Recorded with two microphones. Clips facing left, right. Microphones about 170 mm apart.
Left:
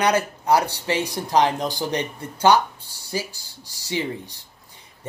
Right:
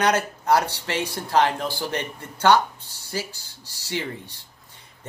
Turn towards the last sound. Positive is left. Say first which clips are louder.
# left 3 dB
turn(degrees=15)  # may be behind; listen again after turning